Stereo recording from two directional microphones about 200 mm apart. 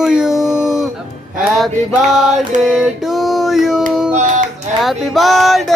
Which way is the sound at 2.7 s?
Centre (ahead or behind).